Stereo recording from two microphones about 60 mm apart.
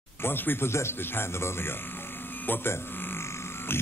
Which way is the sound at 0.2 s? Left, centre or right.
Left.